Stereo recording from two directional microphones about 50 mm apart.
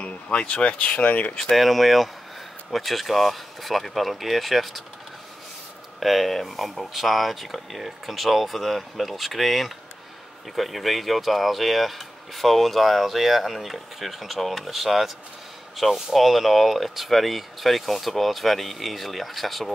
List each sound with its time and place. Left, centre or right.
0.0 s speech: left
1.3 s speech: centre
1.6 s speech: centre
5.9 s speech: centre